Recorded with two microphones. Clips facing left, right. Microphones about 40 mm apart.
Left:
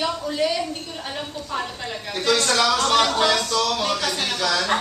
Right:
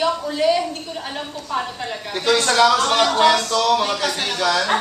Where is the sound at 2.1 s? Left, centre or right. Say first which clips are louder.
Right 3 dB; centre.